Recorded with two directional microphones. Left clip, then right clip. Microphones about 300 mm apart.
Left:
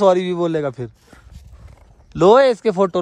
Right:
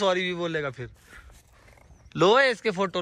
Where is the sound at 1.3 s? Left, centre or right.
Centre.